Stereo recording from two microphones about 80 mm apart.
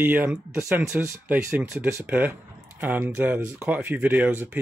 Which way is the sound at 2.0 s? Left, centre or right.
Centre.